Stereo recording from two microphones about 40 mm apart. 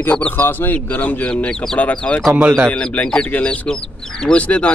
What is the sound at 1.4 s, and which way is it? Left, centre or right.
Speech, left.